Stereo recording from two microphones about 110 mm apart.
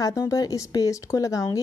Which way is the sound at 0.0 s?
30° left (ahead or behind).